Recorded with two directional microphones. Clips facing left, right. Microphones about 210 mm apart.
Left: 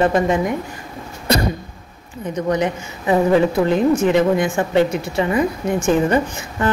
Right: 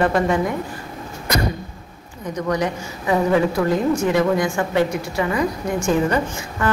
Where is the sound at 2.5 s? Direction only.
25° left (ahead or behind).